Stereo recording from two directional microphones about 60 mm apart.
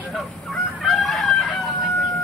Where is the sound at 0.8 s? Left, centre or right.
Centre.